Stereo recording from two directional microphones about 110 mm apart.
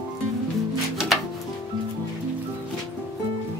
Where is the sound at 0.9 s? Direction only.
Centre (ahead or behind).